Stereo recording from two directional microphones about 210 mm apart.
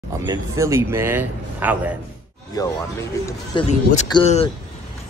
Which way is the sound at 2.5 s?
15° left (ahead or behind).